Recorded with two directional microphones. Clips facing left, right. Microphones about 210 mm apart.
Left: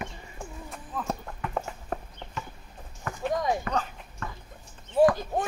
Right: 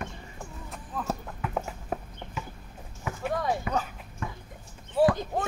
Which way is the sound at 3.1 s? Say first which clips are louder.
Left 1 dB; 10° right (ahead or behind).